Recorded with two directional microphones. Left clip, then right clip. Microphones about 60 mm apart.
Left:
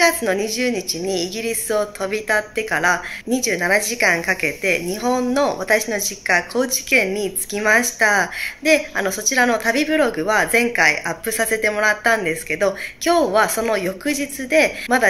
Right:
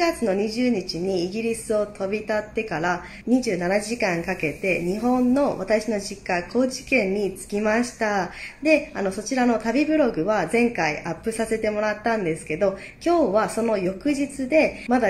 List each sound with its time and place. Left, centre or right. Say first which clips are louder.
0.0 s a woman's voice: left 5 dB; centre
12.2 s speech: left 3 dB; centre